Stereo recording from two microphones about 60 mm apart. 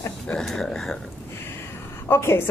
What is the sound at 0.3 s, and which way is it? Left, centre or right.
Speech, centre.